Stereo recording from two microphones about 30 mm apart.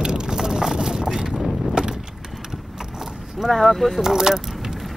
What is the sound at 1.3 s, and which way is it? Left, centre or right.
Vehicle, centre.